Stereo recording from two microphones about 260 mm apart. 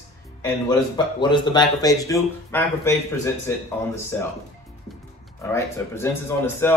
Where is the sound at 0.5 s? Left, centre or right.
Centre.